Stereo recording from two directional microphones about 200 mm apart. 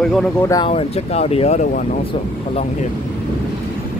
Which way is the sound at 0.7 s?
30° left (ahead or behind).